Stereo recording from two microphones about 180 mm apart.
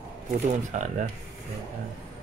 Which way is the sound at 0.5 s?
40° right (ahead or behind).